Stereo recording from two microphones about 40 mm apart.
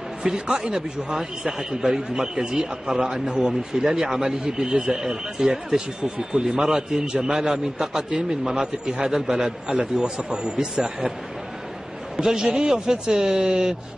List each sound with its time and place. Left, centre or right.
0.2 s a man's voice: right
12.2 s a man's voice: centre